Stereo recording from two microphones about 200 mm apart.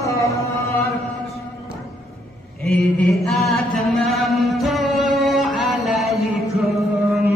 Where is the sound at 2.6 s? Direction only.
Centre (ahead or behind).